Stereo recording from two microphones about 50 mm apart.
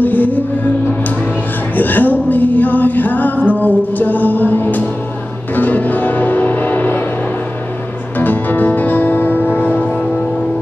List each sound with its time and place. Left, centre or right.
0.0 s music: left
1.8 s music: left
8.2 s music: left